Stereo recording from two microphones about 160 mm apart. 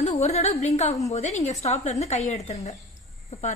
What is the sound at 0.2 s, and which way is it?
A woman's voice, 45° left (ahead or behind).